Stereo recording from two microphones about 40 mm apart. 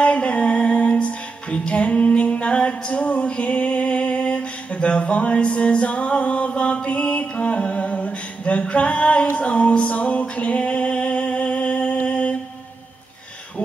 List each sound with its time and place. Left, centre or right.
0.0 s music: left
12.1 s mantra: left